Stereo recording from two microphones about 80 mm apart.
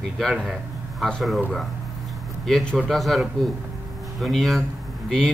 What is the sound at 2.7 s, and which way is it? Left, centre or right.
Speech, centre.